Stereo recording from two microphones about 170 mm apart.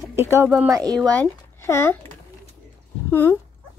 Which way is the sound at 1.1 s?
10° left (ahead or behind).